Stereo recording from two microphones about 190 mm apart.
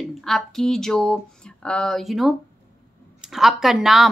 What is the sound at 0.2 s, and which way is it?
A woman's voice, centre (ahead or behind).